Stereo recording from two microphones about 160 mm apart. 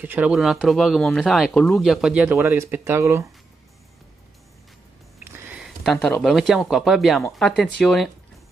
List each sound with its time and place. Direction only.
0.0 s speech: 10° right (ahead or behind)
2.3 s speech: 15° right (ahead or behind)
5.2 s a sound: 5° right (ahead or behind)
6.2 s speech: centre (ahead or behind)